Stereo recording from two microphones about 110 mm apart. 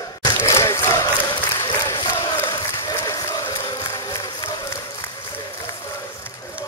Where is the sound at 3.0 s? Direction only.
30° left (ahead or behind).